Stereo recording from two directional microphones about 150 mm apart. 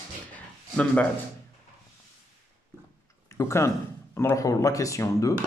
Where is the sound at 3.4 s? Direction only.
20° left (ahead or behind).